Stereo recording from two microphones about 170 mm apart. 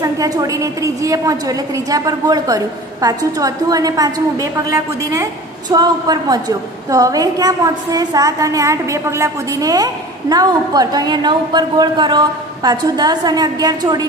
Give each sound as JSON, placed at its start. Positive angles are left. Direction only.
{"t": 0.0, "sound": "a woman's voice", "side_deg": -20}